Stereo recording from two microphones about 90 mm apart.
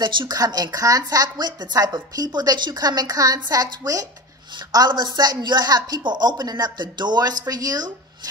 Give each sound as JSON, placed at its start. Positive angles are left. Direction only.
{"t": 0.0, "sound": "speech", "side_deg": -50}